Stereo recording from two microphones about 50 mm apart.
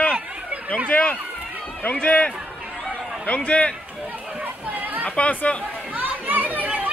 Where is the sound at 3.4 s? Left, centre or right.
Left.